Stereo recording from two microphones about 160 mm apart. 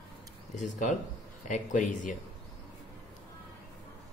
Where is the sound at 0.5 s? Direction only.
50° left (ahead or behind).